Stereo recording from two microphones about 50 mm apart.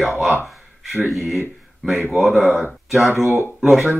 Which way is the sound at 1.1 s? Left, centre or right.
Centre.